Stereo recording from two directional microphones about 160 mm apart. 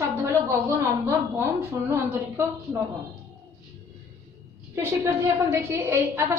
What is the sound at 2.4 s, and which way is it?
Speech, 15° right (ahead or behind).